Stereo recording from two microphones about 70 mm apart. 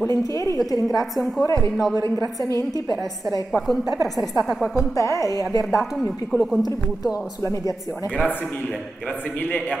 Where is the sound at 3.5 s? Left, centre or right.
Centre.